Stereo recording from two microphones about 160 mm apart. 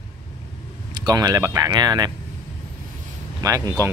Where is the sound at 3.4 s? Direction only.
20° right (ahead or behind).